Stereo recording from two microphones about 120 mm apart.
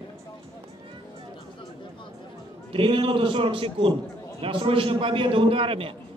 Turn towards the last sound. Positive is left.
turn(degrees=-50)  # may be behind; listen again after turning